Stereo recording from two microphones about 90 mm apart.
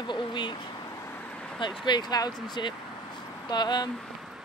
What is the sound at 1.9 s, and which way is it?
Speech, 50° left (ahead or behind).